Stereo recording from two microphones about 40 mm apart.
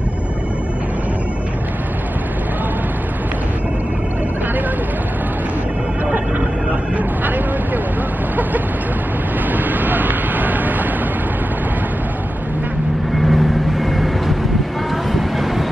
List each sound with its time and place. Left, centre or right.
7.0 s vehicle: right
9.5 s vehicle: right
13.2 s vehicle: centre